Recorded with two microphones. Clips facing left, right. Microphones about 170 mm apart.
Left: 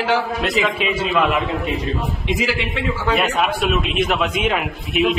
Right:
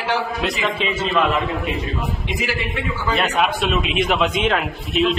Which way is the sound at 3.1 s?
10° left (ahead or behind).